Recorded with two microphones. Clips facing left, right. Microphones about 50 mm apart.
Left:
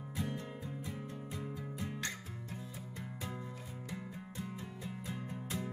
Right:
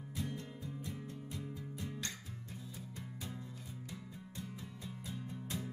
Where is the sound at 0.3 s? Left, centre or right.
Left.